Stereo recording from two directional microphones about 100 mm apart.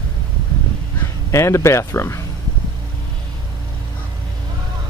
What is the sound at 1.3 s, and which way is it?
Speech, 30° left (ahead or behind).